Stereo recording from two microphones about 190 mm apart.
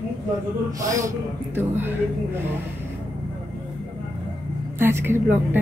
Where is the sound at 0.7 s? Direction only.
15° right (ahead or behind).